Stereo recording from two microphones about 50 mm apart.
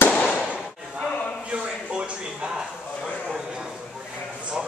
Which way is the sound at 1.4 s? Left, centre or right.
Right.